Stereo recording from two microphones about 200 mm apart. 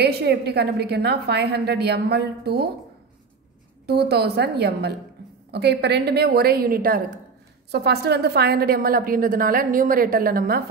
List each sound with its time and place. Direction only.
0.0 s a woman's voice: 55° right (ahead or behind)
3.8 s a woman's voice: 55° right (ahead or behind)